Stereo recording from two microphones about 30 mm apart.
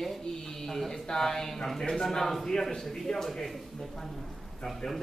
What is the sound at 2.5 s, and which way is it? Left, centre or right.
Speech, left.